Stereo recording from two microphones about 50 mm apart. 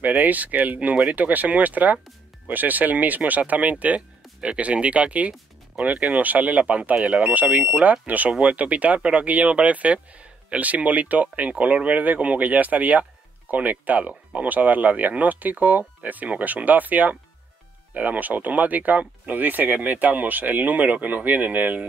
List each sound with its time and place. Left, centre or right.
0.0 s speech: right